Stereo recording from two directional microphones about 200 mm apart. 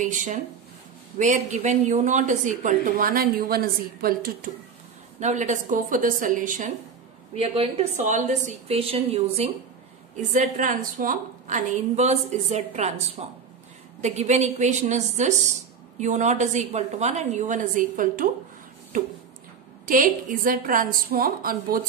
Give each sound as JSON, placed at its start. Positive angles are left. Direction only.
{"t": 0.0, "sound": "a woman's voice", "side_deg": -40}
{"t": 5.2, "sound": "a woman's voice", "side_deg": -35}
{"t": 7.3, "sound": "a woman's voice", "side_deg": -30}
{"t": 10.3, "sound": "a woman's voice", "side_deg": -40}